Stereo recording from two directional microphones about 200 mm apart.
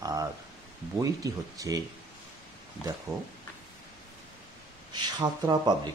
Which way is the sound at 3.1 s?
15° right (ahead or behind).